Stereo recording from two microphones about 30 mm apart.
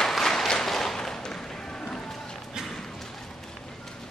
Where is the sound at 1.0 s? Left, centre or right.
Centre.